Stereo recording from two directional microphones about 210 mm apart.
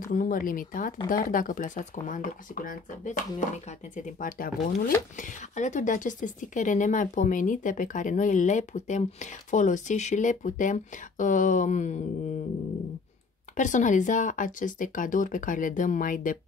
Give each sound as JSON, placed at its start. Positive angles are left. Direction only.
{"t": 0.1, "sound": "speech", "side_deg": 40}
{"t": 13.6, "sound": "speech", "side_deg": 35}